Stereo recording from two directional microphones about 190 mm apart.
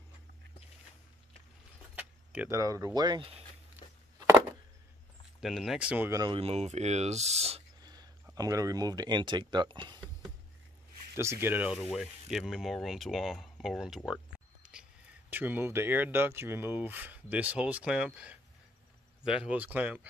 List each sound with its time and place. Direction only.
2.0 s speech: 10° right (ahead or behind)
5.4 s speech: centre (ahead or behind)
6.3 s speech: 35° right (ahead or behind)
7.8 s a sound: 20° right (ahead or behind)
8.4 s speech: 15° right (ahead or behind)
11.1 s speech: 15° right (ahead or behind)